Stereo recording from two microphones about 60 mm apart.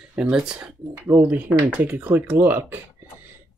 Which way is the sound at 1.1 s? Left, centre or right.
Right.